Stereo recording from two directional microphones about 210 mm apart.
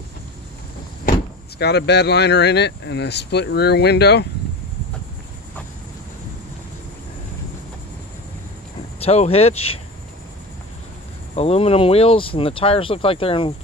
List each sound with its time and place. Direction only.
1.6 s speech: 55° left (ahead or behind)
9.0 s speech: 30° left (ahead or behind)
11.3 s speech: 30° left (ahead or behind)